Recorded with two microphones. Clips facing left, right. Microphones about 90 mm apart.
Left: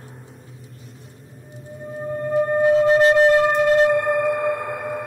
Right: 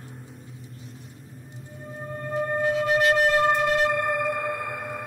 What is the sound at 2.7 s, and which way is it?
Wind instrument, 30° left (ahead or behind).